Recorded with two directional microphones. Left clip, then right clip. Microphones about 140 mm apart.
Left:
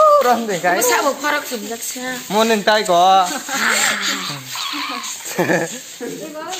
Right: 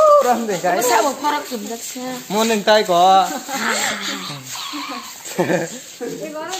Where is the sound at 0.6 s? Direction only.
40° left (ahead or behind).